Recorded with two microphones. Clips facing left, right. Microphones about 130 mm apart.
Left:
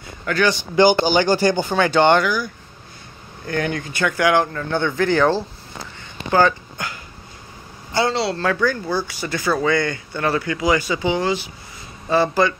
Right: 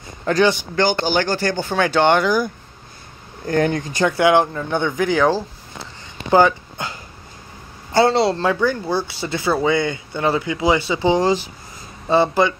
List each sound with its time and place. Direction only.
0.2 s speech: 25° right (ahead or behind)
0.7 s speech: 10° left (ahead or behind)
1.7 s speech: centre (ahead or behind)
3.4 s speech: 35° right (ahead or behind); by 5.4 s 5° right (ahead or behind)
6.3 s speech: 25° right (ahead or behind)
8.1 s speech: 45° right (ahead or behind)
8.4 s speech: 20° right (ahead or behind)
12.1 s speech: 20° right (ahead or behind)